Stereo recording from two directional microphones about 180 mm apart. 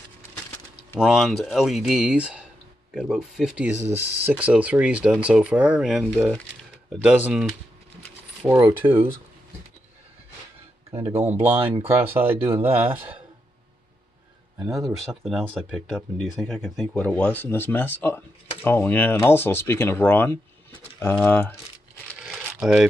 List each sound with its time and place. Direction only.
0.9 s speech: 5° right (ahead or behind)
8.5 s speech: 15° right (ahead or behind)
11.2 s speech: 10° right (ahead or behind)
15.2 s speech: centre (ahead or behind)
22.2 s crumpling: 5° right (ahead or behind)